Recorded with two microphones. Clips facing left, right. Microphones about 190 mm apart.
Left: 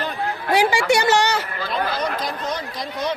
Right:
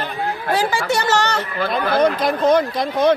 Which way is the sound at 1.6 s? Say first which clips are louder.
Right 10 dB; 55° right (ahead or behind).